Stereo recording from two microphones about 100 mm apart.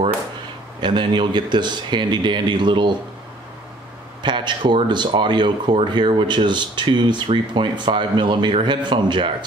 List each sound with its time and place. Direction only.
0.7 s speech: 50° right (ahead or behind)
4.2 s speech: 50° right (ahead or behind)